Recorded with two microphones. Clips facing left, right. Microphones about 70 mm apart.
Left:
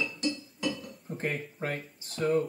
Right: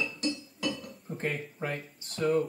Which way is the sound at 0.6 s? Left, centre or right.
Centre.